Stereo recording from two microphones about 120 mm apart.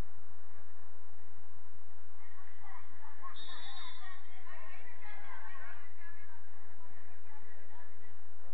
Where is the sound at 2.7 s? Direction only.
15° right (ahead or behind).